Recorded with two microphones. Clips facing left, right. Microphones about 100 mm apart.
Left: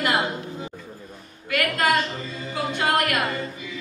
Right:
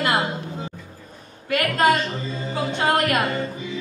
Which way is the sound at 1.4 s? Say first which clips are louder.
Right 4 dB; 30° right (ahead or behind).